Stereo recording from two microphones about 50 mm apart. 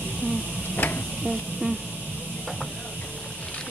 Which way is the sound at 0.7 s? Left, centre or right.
Left.